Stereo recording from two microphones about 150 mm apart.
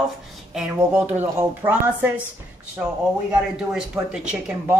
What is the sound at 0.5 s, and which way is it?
A woman's voice, 10° right (ahead or behind).